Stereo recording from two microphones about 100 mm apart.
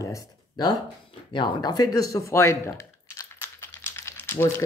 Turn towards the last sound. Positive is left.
turn(degrees=25)  # may be behind; listen again after turning